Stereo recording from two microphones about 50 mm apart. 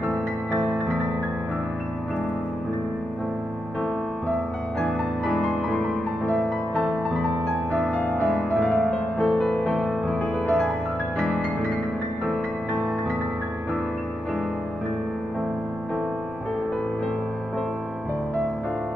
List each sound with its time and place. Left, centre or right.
4.7 s music: centre
7.9 s music: left
9.5 s music: centre